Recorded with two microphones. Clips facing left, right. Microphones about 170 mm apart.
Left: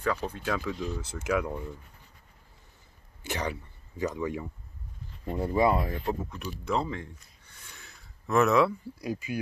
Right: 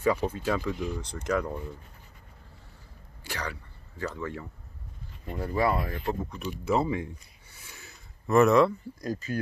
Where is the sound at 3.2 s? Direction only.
20° left (ahead or behind).